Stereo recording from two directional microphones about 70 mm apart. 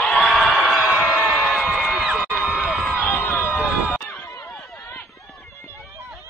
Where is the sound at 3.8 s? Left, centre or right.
Left.